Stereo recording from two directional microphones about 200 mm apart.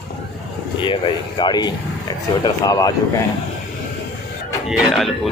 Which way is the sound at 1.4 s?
20° left (ahead or behind).